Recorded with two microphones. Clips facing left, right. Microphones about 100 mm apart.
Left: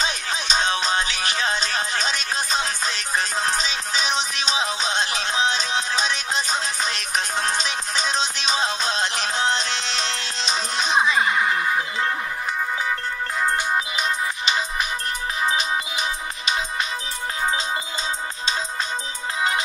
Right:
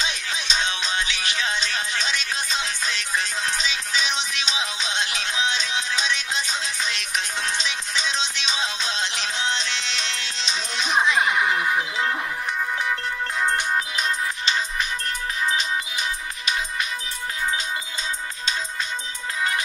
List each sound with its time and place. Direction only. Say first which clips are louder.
0.0 s music: left 3 dB; 40° left (ahead or behind)
11.1 s a sound: even; centre (ahead or behind)
15.4 s music: left 2 dB; 20° left (ahead or behind)